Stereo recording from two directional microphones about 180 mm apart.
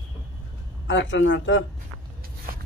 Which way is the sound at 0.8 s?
90° left.